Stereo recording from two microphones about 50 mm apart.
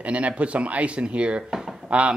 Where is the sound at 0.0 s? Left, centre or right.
Right.